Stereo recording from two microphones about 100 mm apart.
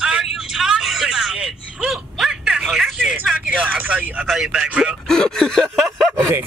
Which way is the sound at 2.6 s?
5° right (ahead or behind).